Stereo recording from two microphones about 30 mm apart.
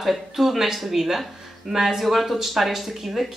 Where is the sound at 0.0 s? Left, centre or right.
Centre.